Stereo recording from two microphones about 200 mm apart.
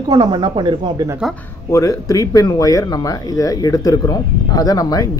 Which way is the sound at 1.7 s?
15° left (ahead or behind).